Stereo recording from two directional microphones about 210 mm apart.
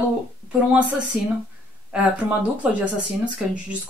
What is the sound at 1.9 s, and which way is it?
Speech, 5° right (ahead or behind).